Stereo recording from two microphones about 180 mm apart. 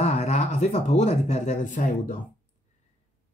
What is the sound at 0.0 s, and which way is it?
Speech, 40° left (ahead or behind).